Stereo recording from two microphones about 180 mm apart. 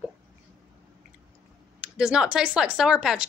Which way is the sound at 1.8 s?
5° right (ahead or behind).